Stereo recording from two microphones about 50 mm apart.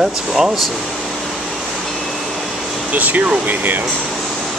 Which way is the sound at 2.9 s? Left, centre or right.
Right.